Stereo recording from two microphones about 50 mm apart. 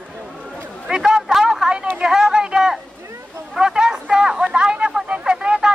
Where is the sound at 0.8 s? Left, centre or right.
Centre.